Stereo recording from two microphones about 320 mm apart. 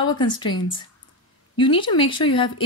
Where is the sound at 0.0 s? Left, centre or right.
Centre.